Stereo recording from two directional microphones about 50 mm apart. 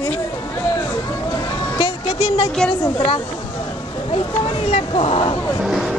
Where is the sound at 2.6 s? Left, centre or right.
Centre.